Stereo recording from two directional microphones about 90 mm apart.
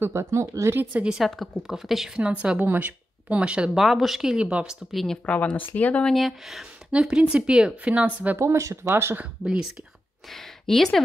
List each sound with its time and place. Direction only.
0.0 s speech: 30° right (ahead or behind)
0.9 s a woman's voice: 5° right (ahead or behind)
2.6 s speech: 20° right (ahead or behind)
4.9 s a woman's voice: 5° left (ahead or behind)
5.2 s speech: 15° left (ahead or behind)
6.1 s speech: centre (ahead or behind)
8.4 s speech: 35° right (ahead or behind)
9.4 s speech: 5° right (ahead or behind)
10.3 s speech: 5° left (ahead or behind)